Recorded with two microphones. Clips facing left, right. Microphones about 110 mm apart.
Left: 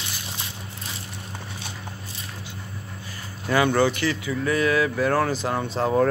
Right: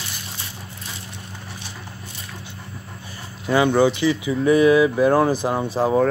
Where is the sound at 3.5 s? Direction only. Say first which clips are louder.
Right 3 dB; 15° right (ahead or behind).